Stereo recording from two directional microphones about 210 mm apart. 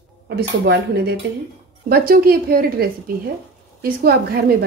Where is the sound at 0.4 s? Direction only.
50° right (ahead or behind).